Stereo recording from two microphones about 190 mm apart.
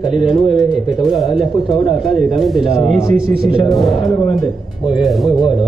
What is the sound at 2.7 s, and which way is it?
Speech, 30° left (ahead or behind).